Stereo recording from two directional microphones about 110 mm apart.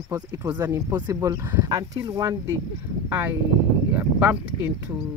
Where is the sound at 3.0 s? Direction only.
20° right (ahead or behind).